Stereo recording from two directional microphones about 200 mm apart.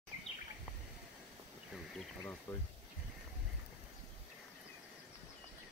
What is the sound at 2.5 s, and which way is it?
Speech, 10° left (ahead or behind).